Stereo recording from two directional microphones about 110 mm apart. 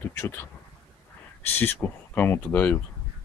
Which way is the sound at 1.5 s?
20° left (ahead or behind).